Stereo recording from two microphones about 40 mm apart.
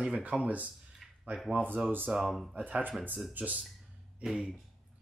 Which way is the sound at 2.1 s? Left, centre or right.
Right.